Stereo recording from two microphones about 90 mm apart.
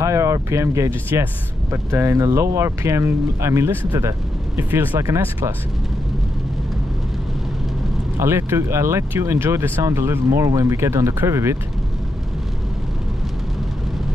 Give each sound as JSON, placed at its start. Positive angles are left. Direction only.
{"t": 0.0, "sound": "speech", "side_deg": -35}
{"t": 8.2, "sound": "speech", "side_deg": -30}